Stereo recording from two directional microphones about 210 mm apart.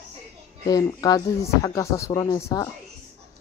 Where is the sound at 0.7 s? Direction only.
20° left (ahead or behind).